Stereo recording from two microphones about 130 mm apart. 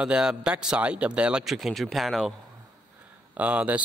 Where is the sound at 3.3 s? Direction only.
10° right (ahead or behind).